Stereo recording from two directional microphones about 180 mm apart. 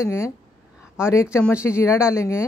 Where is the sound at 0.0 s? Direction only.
15° left (ahead or behind).